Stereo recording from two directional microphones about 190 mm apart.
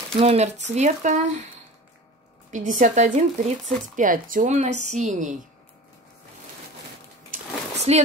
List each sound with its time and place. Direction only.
0.1 s speech: 35° right (ahead or behind)
2.5 s speech: 40° right (ahead or behind)
7.7 s a sound: 35° right (ahead or behind)